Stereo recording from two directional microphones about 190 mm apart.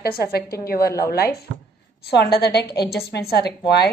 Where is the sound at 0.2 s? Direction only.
55° left (ahead or behind).